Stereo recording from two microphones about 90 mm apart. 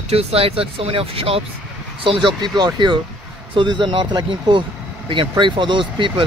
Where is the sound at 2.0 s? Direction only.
60° right (ahead or behind).